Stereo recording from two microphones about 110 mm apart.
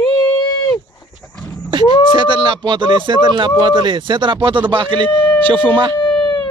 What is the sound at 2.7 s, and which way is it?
Speech, 45° right (ahead or behind).